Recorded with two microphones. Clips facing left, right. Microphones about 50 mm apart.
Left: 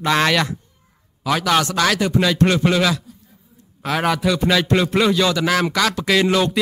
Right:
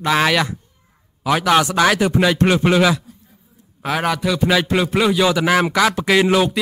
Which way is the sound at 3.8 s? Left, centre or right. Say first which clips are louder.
Even; centre.